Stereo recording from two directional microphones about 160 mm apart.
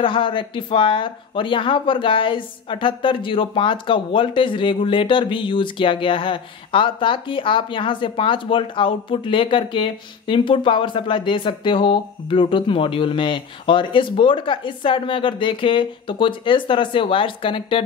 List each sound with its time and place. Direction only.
0.0 s speech: 30° left (ahead or behind)